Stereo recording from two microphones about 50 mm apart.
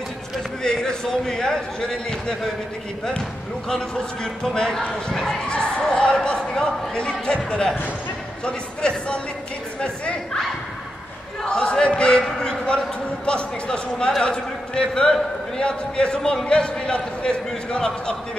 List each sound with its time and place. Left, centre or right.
0.7 s a man's voice: centre
3.6 s a man's voice: centre
5.5 s a man's voice: centre
8.5 s a man's voice: centre
11.4 s a man's voice: centre